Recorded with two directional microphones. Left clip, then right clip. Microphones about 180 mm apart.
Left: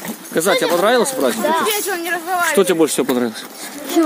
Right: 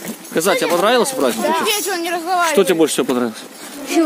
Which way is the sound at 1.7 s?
70° right (ahead or behind).